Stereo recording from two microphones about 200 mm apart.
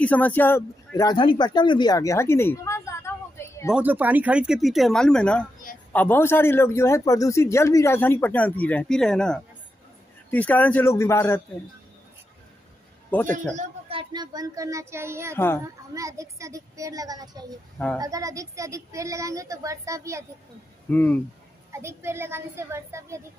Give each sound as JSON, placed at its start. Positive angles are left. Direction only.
{"t": 0.0, "sound": "speech", "side_deg": 10}
{"t": 3.7, "sound": "a man's voice", "side_deg": -10}
{"t": 13.6, "sound": "speech", "side_deg": -25}
{"t": 15.3, "sound": "a man's voice", "side_deg": 10}
{"t": 15.9, "sound": "speech", "side_deg": -15}
{"t": 20.9, "sound": "a man's voice", "side_deg": 10}
{"t": 21.7, "sound": "speech", "side_deg": -15}